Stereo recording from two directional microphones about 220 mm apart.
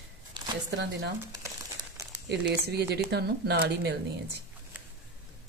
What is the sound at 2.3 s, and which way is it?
Speech, 50° right (ahead or behind).